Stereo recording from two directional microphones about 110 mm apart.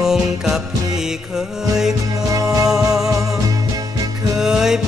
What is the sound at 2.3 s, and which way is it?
Music, 35° right (ahead or behind).